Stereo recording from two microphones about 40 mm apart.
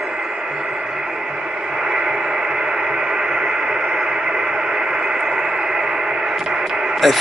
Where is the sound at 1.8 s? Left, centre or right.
Centre.